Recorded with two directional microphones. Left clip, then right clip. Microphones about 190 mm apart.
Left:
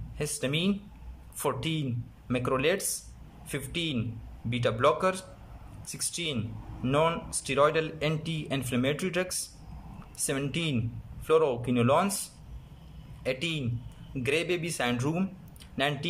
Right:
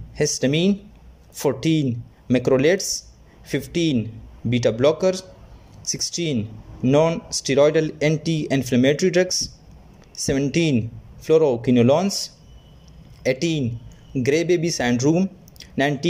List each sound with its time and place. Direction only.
0.4 s speech: 30° right (ahead or behind)